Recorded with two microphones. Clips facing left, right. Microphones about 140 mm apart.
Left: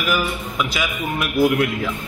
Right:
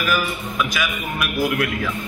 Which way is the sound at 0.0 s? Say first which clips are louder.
Left 1 dB; 20° left (ahead or behind).